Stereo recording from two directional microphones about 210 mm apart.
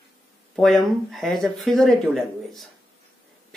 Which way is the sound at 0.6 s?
Centre (ahead or behind).